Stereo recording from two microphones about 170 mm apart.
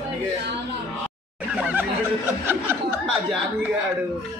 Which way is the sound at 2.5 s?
10° right (ahead or behind).